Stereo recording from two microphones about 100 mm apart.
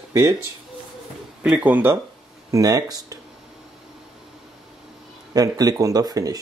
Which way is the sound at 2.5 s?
35° right (ahead or behind).